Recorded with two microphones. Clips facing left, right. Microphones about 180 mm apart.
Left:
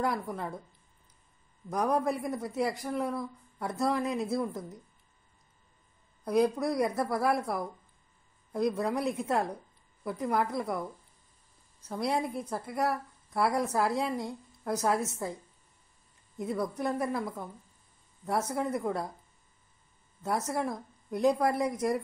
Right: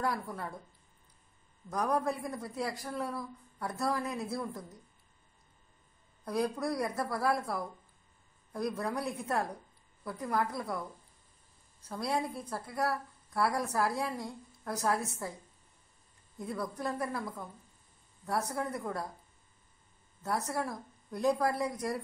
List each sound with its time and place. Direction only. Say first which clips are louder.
0.0 s a woman's voice: left 3 dB; 20° left (ahead or behind)
1.7 s a woman's voice: left 3 dB; 20° left (ahead or behind)
6.2 s a woman's voice: left 6 dB; 20° left (ahead or behind)
11.9 s a woman's voice: left 3 dB; 20° left (ahead or behind)
16.3 s a woman's voice: left 5 dB; 20° left (ahead or behind)
18.2 s a woman's voice: left 3 dB; 20° left (ahead or behind)
20.2 s a woman's voice: left 3 dB; 20° left (ahead or behind)